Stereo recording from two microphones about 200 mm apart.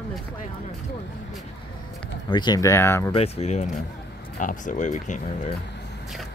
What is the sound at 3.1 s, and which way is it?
Speech, 30° left (ahead or behind).